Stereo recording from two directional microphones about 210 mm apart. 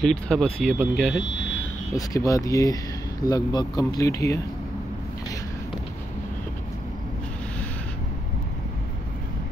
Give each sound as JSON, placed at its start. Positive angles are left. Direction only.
{"t": 0.0, "sound": "speech", "side_deg": 5}
{"t": 1.2, "sound": "speech", "side_deg": 60}
{"t": 2.0, "sound": "speech", "side_deg": 15}